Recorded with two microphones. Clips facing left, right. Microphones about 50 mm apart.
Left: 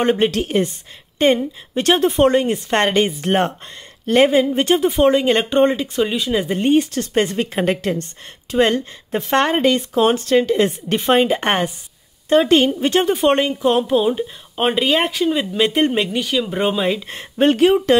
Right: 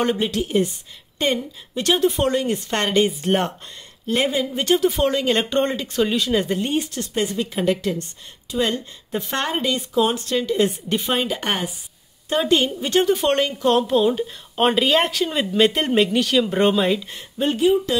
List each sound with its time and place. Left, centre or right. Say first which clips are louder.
0.0 s a woman's voice: left 5 dB; left
0.3 s a woman's voice: left 2 dB; left; by 6.5 s centre
6.5 s a woman's voice: left 7 dB; left
10.5 s a woman's voice: left 3 dB; left; by 17.0 s centre
17.1 s speech: left 7 dB; left